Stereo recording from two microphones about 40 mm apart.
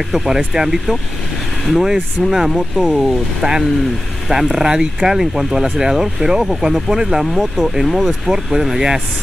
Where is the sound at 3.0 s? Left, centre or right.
Centre.